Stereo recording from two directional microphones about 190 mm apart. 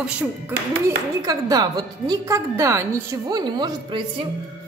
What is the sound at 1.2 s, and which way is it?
A woman's voice, 20° right (ahead or behind).